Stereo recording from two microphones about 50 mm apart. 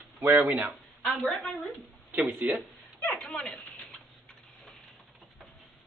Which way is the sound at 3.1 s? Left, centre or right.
Centre.